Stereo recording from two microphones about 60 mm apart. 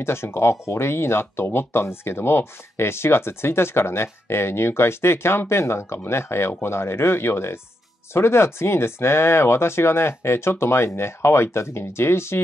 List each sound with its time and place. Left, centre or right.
0.0 s speech: left